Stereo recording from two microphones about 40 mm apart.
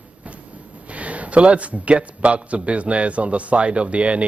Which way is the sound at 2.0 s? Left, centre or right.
Right.